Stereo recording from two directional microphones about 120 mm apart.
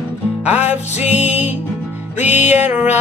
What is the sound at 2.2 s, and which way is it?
Music, 70° left (ahead or behind).